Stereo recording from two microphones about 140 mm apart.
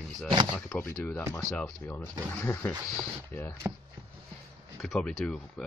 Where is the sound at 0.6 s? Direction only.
15° left (ahead or behind).